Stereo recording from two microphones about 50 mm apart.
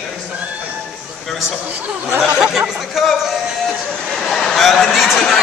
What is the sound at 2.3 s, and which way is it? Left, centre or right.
Speech, centre.